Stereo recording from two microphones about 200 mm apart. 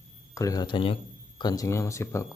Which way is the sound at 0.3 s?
15° left (ahead or behind).